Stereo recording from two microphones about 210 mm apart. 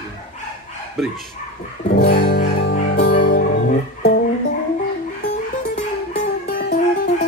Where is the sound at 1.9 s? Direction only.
50° left (ahead or behind).